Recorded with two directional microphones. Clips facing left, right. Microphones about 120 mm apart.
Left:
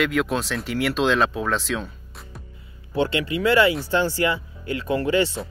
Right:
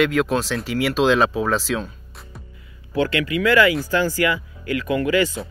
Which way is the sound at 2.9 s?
25° left (ahead or behind).